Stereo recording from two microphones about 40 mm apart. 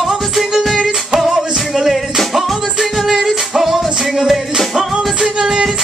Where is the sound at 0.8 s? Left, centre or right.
Centre.